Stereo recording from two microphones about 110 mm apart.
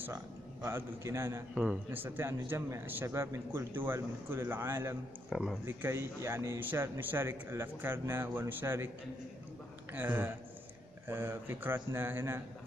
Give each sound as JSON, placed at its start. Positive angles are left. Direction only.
{"t": 0.1, "sound": "speech", "side_deg": -25}
{"t": 1.5, "sound": "speech", "side_deg": -5}
{"t": 1.9, "sound": "speech", "side_deg": -20}
{"t": 5.3, "sound": "speech", "side_deg": 0}
{"t": 5.8, "sound": "speech", "side_deg": -25}
{"t": 9.9, "sound": "speech", "side_deg": -20}